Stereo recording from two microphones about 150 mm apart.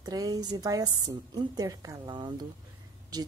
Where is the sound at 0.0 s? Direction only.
25° right (ahead or behind).